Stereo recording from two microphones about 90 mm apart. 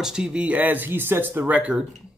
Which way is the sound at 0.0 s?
10° right (ahead or behind).